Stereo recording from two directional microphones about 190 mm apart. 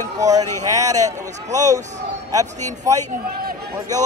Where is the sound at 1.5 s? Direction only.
40° right (ahead or behind).